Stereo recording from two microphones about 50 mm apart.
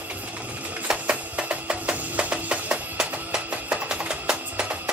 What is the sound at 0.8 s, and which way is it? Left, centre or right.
Music, right.